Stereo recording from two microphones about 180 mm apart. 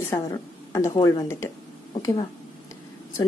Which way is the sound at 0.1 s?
15° left (ahead or behind).